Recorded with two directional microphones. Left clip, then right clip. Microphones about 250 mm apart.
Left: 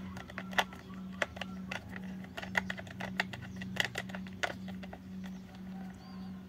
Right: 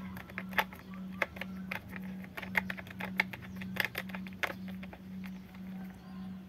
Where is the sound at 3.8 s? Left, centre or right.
Centre.